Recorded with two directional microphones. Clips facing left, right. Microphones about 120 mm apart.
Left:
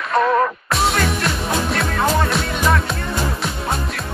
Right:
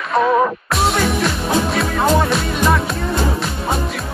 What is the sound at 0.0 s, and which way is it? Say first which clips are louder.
Music: right 2 dB; centre (ahead or behind).